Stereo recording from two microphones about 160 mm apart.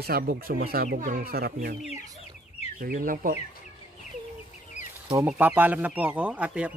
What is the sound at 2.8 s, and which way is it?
Speech, 60° right (ahead or behind).